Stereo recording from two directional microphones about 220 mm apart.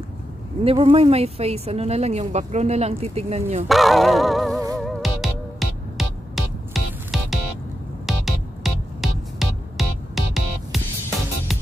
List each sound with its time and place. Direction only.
0.7 s speech: 25° right (ahead or behind)
3.6 s music: centre (ahead or behind)